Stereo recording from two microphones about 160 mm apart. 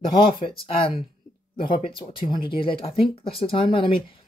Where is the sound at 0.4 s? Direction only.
35° left (ahead or behind).